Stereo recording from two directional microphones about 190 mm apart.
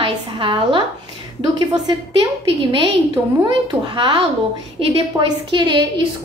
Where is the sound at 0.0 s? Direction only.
25° right (ahead or behind).